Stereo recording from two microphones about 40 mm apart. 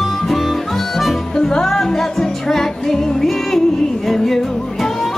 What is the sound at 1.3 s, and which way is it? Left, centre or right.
Music, centre.